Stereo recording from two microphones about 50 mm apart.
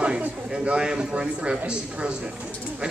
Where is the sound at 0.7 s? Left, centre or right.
Centre.